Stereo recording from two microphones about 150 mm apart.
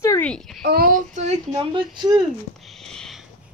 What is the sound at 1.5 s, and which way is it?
Speech, 30° right (ahead or behind).